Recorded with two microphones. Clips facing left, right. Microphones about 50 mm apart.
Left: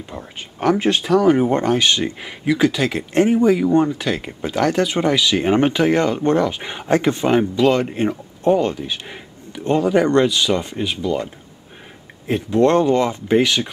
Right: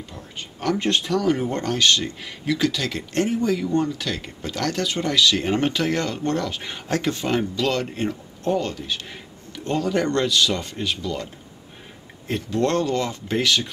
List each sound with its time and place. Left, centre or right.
0.7 s speech: centre
1.2 s speech: left
12.3 s speech: centre